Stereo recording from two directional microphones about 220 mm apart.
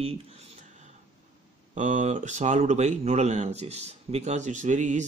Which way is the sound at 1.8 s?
35° right (ahead or behind).